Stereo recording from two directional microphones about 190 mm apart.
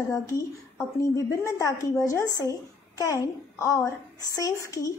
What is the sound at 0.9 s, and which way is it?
A woman's voice, 15° left (ahead or behind).